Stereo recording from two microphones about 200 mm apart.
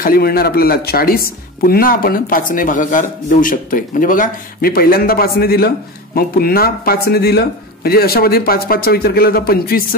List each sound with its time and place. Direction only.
0.0 s speech: 50° left (ahead or behind)